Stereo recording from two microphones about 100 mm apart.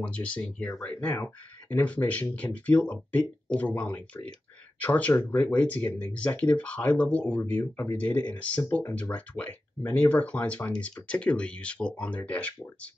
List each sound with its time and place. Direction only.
0.0 s speech: 10° left (ahead or behind)
7.7 s speech: 30° left (ahead or behind)
8.0 s speech: 15° left (ahead or behind)